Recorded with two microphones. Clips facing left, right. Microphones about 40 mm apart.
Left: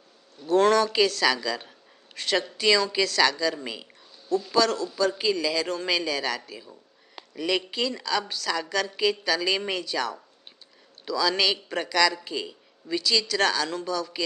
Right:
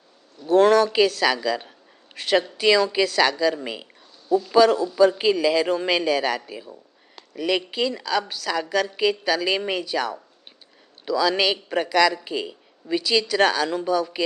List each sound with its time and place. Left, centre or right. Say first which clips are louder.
0.4 s a man's voice: right 4 dB; centre